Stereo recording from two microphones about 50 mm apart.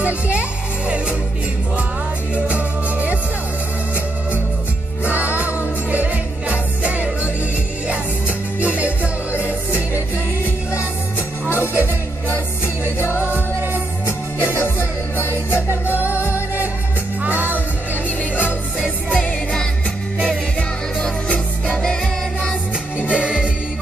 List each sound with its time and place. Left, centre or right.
0.0 s speech: right
2.3 s music: right
5.1 s music: right
8.5 s music: right
11.4 s music: left
13.0 s music: left
14.4 s music: left
16.1 s music: left
17.2 s music: right
19.1 s music: centre
23.0 s music: right